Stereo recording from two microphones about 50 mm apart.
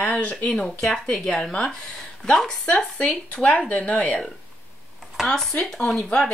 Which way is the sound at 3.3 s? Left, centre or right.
Left.